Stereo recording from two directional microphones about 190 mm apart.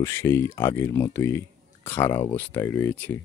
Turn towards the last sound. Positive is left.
turn(degrees=10)  # may be behind; listen again after turning